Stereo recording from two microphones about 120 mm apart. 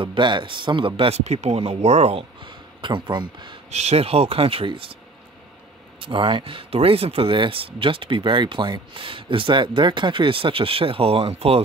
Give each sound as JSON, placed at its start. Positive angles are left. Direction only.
{"t": 0.0, "sound": "speech", "side_deg": -45}
{"t": 2.4, "sound": "speech", "side_deg": -40}
{"t": 3.7, "sound": "speech", "side_deg": -65}
{"t": 5.9, "sound": "speech", "side_deg": -45}